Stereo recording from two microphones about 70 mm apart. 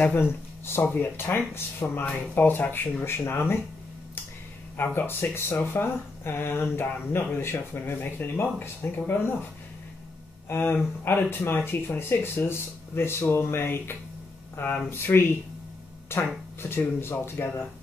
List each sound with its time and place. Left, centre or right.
0.2 s speech: left
4.7 s speech: left
10.5 s speech: left
11.2 s speech: left